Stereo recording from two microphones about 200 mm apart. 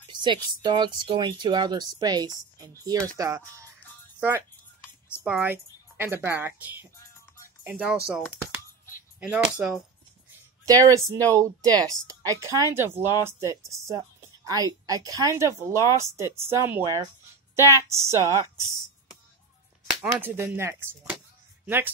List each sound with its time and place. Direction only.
0.1 s a woman's voice: 25° right (ahead or behind); by 8.0 s 5° right (ahead or behind)
9.2 s a woman's voice: 10° right (ahead or behind)
20.0 s a woman's voice: 10° right (ahead or behind)